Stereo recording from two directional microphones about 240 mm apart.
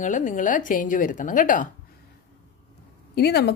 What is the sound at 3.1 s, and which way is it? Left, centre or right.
Speech, left.